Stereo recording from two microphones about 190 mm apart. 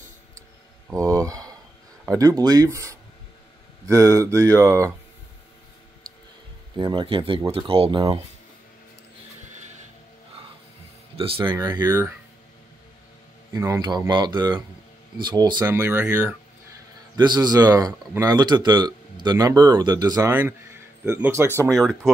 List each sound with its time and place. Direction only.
0.8 s a sound: 15° right (ahead or behind)
2.1 s speech: 20° right (ahead or behind)
6.8 s speech: 25° right (ahead or behind)
11.4 s speech: 20° right (ahead or behind)
13.5 s speech: 20° right (ahead or behind)
21.5 s speech: 5° left (ahead or behind)